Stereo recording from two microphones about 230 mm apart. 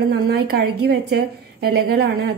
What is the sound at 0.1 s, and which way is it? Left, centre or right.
A woman's voice, right.